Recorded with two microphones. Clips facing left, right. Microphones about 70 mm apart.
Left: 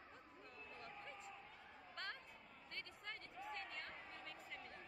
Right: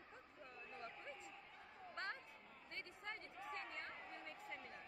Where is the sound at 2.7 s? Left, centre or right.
Right.